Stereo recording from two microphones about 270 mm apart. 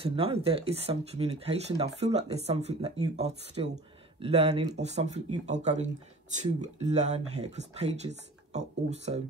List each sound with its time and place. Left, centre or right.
0.0 s speech: right